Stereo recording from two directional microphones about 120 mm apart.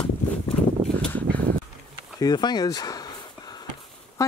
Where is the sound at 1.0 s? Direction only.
10° left (ahead or behind).